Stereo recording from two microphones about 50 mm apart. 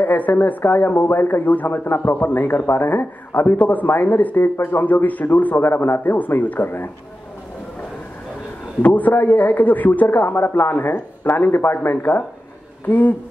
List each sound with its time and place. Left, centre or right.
0.0 s a man's voice: left
8.8 s a man's voice: left
12.8 s a man's voice: left